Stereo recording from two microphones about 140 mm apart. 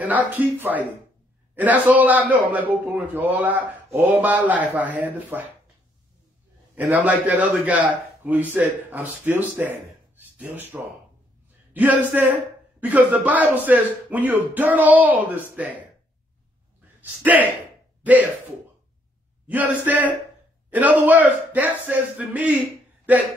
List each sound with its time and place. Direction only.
0.0 s a man's voice: 10° right (ahead or behind)
6.7 s a man's voice: 10° right (ahead or behind)
17.0 s a man's voice: 10° right (ahead or behind)
19.4 s a man's voice: 10° right (ahead or behind)